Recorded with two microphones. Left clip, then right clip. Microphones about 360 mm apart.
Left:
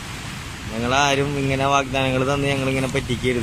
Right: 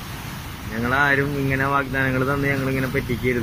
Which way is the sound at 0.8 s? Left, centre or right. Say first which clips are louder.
Even; centre.